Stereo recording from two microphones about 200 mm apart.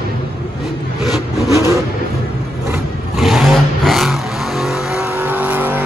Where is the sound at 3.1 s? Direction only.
Centre (ahead or behind).